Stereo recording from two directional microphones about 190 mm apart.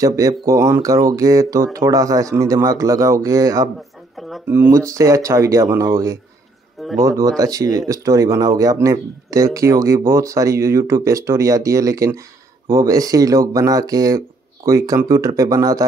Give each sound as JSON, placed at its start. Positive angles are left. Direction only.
{"t": 0.0, "sound": "speech", "side_deg": -20}